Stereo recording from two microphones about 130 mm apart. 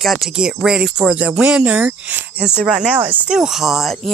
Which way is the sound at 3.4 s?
5° right (ahead or behind).